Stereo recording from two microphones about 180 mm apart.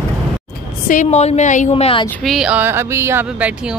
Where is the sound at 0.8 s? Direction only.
40° left (ahead or behind).